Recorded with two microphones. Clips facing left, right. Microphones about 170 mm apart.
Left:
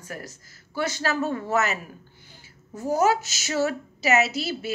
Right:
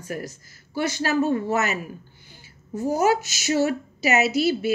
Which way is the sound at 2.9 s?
15° right (ahead or behind).